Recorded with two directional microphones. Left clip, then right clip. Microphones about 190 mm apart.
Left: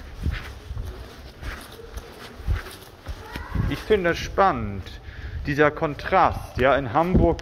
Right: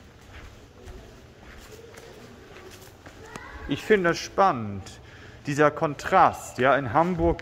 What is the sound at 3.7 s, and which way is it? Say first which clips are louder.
Speech: even; 35° right (ahead or behind).